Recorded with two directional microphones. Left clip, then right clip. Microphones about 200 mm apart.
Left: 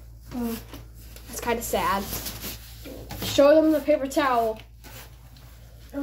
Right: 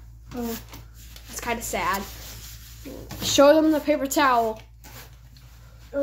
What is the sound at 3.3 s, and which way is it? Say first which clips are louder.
A woman's voice: right 1 dB; 30° right (ahead or behind).